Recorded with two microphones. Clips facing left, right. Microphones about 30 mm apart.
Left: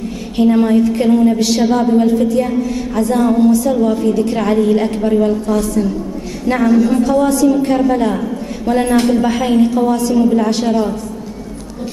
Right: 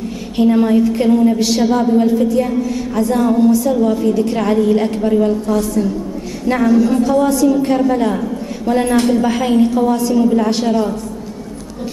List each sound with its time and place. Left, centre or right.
0.4 s a woman's voice: centre